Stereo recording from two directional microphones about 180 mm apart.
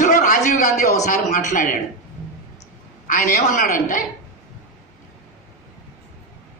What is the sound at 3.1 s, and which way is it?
Speech, 45° left (ahead or behind).